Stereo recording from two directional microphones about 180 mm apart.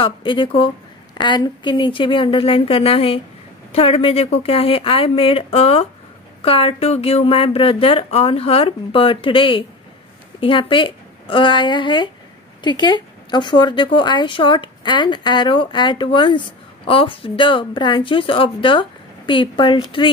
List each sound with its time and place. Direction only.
0.0 s a woman's voice: 30° left (ahead or behind)